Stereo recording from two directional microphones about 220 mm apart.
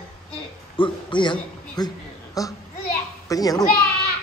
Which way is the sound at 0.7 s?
20° left (ahead or behind).